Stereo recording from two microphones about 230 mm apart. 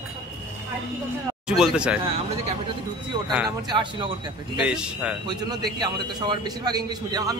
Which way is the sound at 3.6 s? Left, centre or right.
Centre.